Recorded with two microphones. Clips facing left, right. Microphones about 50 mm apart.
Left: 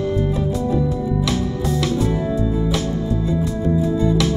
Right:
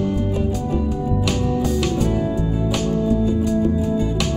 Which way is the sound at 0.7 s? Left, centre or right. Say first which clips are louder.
Left 2 dB; right.